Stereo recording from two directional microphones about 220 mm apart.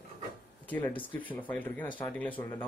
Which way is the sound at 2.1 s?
5° left (ahead or behind).